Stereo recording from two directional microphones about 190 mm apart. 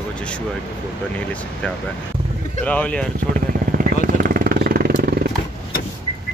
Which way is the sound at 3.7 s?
50° right (ahead or behind).